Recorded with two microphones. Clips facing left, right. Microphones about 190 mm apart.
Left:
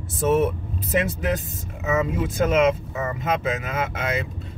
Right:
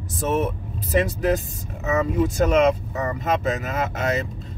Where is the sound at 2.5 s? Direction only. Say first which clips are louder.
Right 1 dB; 40° right (ahead or behind).